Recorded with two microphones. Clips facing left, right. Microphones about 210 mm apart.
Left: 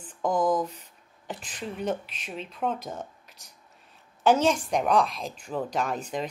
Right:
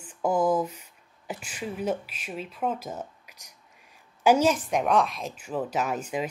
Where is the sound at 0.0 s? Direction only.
10° right (ahead or behind).